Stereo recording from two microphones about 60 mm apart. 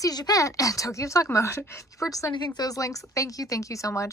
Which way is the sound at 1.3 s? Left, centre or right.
Left.